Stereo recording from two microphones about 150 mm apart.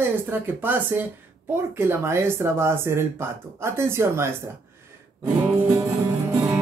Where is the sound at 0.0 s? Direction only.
15° right (ahead or behind).